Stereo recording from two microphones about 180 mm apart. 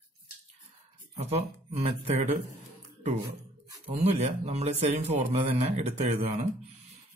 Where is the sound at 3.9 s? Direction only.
40° right (ahead or behind).